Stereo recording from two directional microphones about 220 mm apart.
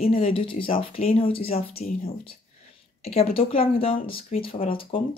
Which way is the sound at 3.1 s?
25° left (ahead or behind).